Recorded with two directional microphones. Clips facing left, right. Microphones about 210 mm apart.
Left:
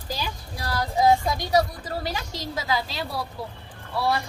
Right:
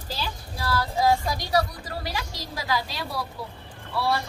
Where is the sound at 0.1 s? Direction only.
15° left (ahead or behind).